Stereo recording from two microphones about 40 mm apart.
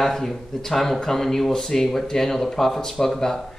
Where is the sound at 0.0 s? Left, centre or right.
Centre.